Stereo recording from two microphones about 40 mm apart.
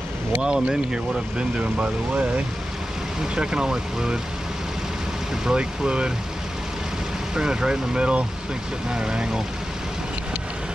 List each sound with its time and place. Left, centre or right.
0.4 s speech: right
1.6 s speech: right
3.3 s speech: centre
5.4 s speech: right
7.3 s speech: centre